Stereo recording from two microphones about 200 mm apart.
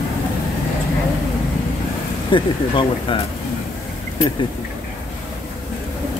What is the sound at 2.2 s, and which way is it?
Speech, 25° left (ahead or behind).